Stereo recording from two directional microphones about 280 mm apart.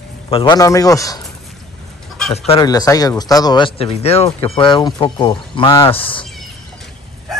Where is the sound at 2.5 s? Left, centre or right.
Centre.